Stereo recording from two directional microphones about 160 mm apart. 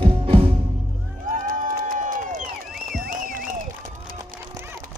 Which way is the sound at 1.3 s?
55° right (ahead or behind).